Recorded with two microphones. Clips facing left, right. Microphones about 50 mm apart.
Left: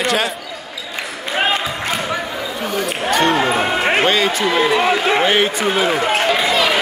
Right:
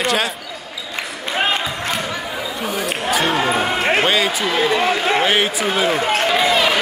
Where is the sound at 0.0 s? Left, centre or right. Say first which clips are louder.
Left 1 dB; centre.